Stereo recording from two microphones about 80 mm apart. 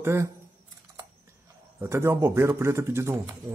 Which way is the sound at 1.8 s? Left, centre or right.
Right.